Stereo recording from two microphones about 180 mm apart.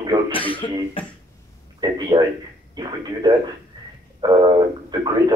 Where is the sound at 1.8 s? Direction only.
20° right (ahead or behind).